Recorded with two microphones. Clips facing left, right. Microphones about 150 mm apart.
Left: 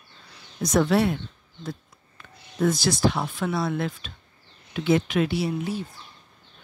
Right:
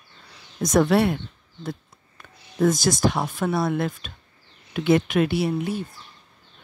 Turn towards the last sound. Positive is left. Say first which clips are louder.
# right 3 dB
turn(degrees=-55)  # may be behind; listen again after turning